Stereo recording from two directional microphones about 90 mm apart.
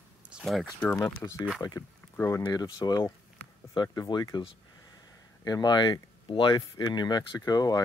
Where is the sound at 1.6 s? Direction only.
50° left (ahead or behind).